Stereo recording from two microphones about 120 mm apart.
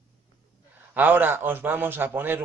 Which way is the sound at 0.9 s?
15° right (ahead or behind).